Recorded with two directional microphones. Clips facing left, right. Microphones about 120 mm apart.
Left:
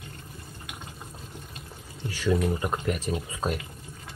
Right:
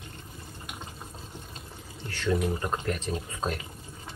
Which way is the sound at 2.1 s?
10° left (ahead or behind).